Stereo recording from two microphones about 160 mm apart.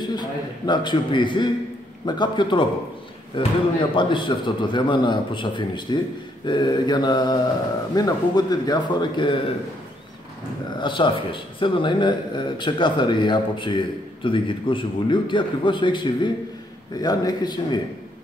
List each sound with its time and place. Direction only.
0.0 s speech: 25° left (ahead or behind)
10.8 s speech: 30° left (ahead or behind)